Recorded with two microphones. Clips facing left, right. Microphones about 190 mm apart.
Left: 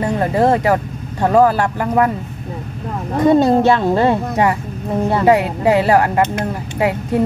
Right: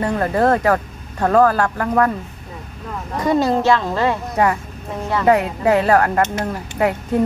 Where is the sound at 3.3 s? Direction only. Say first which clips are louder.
Left 4 dB; 25° left (ahead or behind).